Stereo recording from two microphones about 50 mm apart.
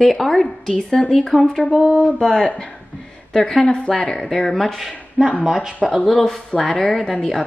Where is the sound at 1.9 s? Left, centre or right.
Left.